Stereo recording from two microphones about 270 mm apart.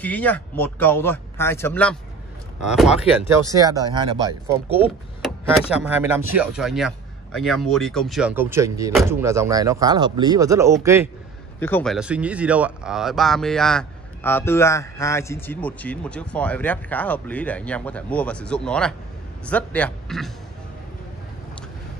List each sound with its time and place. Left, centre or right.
0.0 s speech: centre
3.5 s speech: centre
4.6 s speech: centre
5.2 s speech: centre
11.6 s speech: centre